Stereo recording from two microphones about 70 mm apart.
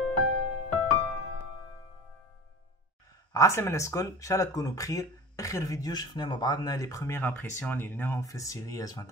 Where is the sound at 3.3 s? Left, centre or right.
Left.